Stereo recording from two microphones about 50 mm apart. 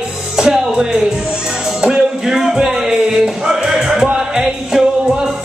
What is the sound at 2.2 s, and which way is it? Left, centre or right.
Music, centre.